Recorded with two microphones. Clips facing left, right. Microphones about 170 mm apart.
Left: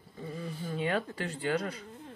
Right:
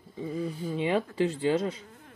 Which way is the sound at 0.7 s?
20° right (ahead or behind).